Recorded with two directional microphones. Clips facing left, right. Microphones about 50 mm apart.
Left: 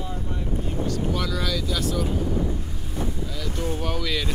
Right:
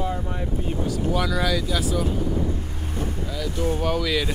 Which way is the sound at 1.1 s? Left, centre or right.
Centre.